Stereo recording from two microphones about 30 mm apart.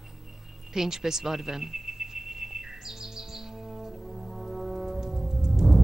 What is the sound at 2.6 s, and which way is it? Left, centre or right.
Brass instrument, centre.